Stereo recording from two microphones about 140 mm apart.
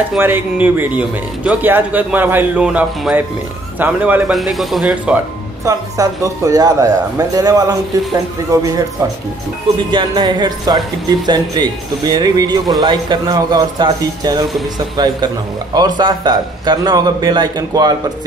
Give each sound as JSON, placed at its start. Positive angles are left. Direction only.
{"t": 0.2, "sound": "speech", "side_deg": -15}
{"t": 4.3, "sound": "speech", "side_deg": 0}
{"t": 5.7, "sound": "speech", "side_deg": -25}
{"t": 9.8, "sound": "a man's voice", "side_deg": -35}